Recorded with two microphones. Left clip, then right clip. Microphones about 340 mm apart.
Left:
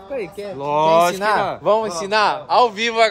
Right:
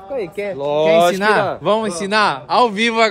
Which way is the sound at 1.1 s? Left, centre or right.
Right.